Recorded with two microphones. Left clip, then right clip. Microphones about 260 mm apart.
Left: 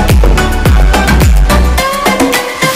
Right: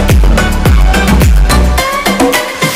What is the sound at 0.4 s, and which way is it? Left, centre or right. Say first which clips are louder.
Music: even; centre.